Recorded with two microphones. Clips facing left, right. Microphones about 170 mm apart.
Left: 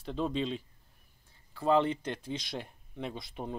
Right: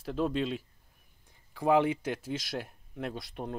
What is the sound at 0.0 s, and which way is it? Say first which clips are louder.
Speech: right 2 dB; 5° right (ahead or behind).